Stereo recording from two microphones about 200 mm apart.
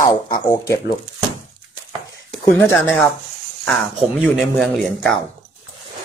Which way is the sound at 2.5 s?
15° left (ahead or behind).